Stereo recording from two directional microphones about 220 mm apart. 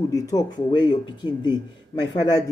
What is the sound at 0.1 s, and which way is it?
Speech, 15° left (ahead or behind).